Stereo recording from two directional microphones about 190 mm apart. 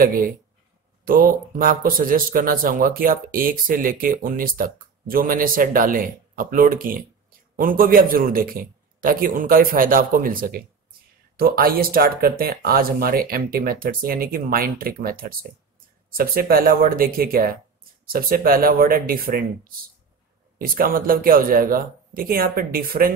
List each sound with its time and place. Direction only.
0.0 s speech: 50° right (ahead or behind)